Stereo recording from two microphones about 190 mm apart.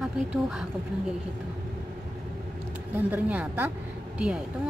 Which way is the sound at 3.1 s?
10° right (ahead or behind).